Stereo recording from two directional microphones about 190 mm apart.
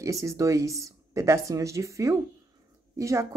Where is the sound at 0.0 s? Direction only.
15° right (ahead or behind).